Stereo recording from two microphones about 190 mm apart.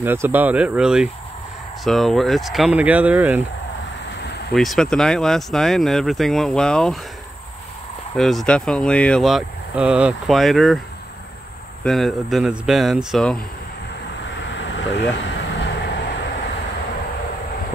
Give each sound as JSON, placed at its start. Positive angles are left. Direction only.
{"t": 0.0, "sound": "speech", "side_deg": -10}
{"t": 4.6, "sound": "speech", "side_deg": 0}
{"t": 8.2, "sound": "speech", "side_deg": 0}
{"t": 11.8, "sound": "speech", "side_deg": 0}
{"t": 14.3, "sound": "vehicle", "side_deg": 70}